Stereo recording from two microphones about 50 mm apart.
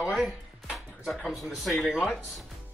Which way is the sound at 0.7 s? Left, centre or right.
Centre.